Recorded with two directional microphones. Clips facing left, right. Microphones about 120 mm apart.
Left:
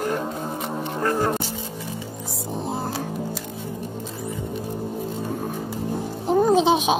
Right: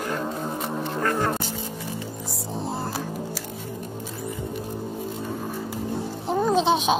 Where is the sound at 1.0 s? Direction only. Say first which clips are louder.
Left 3 dB; 30° left (ahead or behind).